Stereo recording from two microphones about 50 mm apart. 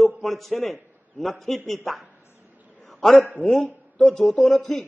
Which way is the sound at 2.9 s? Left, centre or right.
Centre.